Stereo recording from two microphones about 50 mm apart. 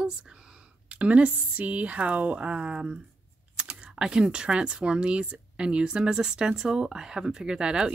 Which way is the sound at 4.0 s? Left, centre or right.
Centre.